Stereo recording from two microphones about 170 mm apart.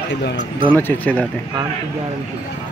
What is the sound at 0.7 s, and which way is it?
Speech, 10° left (ahead or behind).